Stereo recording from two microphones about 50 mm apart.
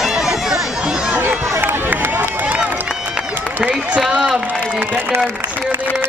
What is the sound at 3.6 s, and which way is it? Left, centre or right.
Speech, right.